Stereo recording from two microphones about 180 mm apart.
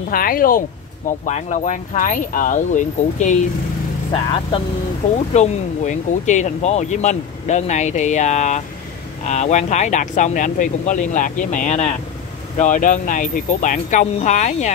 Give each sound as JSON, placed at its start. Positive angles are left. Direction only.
{"t": 0.1, "sound": "speech", "side_deg": 50}
{"t": 4.1, "sound": "speech", "side_deg": 30}
{"t": 5.3, "sound": "speech", "side_deg": 40}